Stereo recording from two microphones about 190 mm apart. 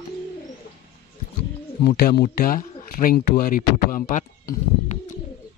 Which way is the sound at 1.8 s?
55° left (ahead or behind).